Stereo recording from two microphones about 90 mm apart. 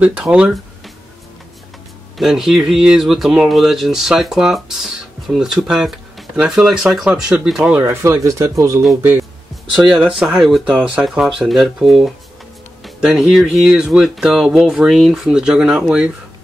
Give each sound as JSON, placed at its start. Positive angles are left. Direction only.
{"t": 0.0, "sound": "speech", "side_deg": -15}
{"t": 2.1, "sound": "speech", "side_deg": -5}
{"t": 7.8, "sound": "speech", "side_deg": -30}
{"t": 10.0, "sound": "speech", "side_deg": -10}